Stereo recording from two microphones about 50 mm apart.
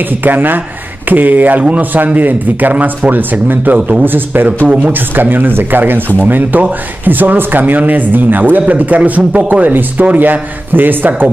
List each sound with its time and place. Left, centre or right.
0.2 s speech: right